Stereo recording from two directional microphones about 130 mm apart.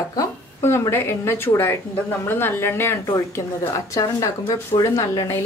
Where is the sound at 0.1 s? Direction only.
25° left (ahead or behind).